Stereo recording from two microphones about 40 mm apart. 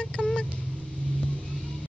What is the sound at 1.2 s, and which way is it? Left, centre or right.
Vehicle, left.